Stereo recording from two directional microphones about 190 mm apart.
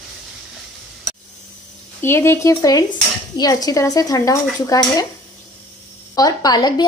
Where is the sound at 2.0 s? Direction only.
15° left (ahead or behind).